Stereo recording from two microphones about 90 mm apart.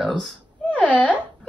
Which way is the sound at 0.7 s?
15° left (ahead or behind).